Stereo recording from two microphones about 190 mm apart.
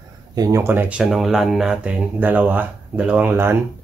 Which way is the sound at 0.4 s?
15° right (ahead or behind).